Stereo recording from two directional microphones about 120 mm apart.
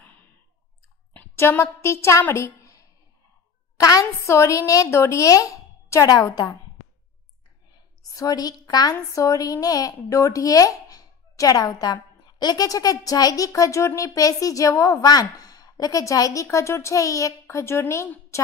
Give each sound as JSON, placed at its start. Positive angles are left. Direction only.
{"t": 1.1, "sound": "a woman's voice", "side_deg": 15}
{"t": 8.1, "sound": "a woman's voice", "side_deg": 30}